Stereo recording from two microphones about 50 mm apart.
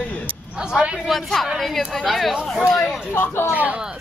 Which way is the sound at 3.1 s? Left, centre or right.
Left.